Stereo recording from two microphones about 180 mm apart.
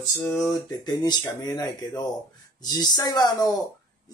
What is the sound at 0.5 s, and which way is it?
Speech, 20° left (ahead or behind).